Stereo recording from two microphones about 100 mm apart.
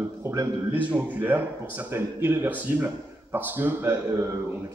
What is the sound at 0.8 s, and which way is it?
A man's voice, 15° right (ahead or behind).